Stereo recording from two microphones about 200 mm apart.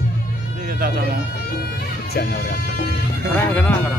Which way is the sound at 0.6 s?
50° right (ahead or behind).